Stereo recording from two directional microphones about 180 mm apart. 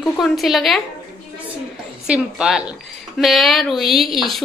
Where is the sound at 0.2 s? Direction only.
Centre (ahead or behind).